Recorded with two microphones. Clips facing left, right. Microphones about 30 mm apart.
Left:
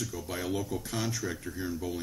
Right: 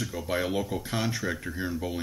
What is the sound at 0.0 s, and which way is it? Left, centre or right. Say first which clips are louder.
Speech: right 6 dB; right.